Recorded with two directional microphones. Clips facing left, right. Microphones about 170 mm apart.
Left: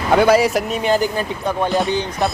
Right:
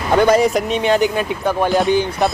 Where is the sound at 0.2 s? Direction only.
5° left (ahead or behind).